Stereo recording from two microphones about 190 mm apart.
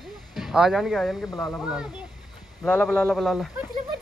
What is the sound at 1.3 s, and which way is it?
Speech, 20° left (ahead or behind).